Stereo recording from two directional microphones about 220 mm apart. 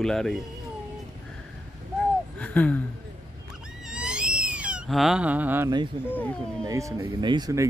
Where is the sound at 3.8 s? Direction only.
5° right (ahead or behind).